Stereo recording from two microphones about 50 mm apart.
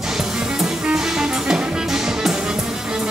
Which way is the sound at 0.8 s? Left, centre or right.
Centre.